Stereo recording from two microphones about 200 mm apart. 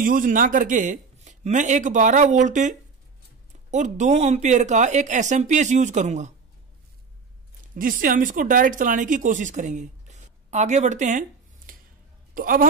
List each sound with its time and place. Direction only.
0.0 s speech: 45° right (ahead or behind)
3.7 s speech: 35° right (ahead or behind)
7.7 s speech: 45° right (ahead or behind)